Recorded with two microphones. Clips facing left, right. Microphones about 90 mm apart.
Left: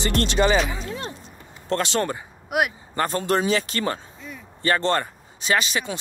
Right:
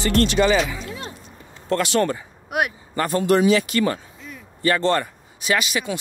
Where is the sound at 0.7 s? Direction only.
35° left (ahead or behind).